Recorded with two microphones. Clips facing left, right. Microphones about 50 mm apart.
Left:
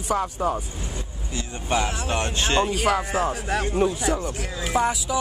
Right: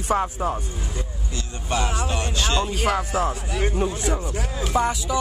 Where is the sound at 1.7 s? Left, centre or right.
Left.